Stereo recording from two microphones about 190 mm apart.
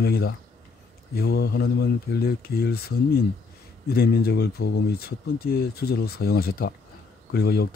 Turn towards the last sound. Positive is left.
turn(degrees=55)  # may be behind; listen again after turning